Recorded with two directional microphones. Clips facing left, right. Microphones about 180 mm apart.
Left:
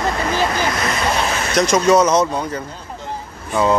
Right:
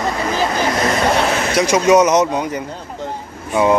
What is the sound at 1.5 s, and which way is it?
Speech, 10° right (ahead or behind).